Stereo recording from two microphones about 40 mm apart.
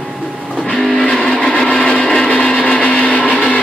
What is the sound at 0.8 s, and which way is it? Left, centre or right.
Vehicle, centre.